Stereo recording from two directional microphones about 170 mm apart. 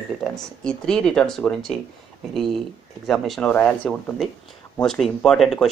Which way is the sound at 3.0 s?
Centre (ahead or behind).